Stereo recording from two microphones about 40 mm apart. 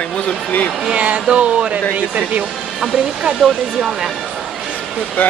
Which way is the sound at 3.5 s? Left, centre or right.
Centre.